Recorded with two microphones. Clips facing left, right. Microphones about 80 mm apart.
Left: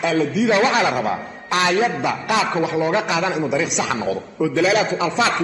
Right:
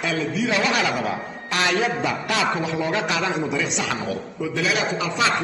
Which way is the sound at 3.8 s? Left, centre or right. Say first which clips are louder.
Left 4 dB; left.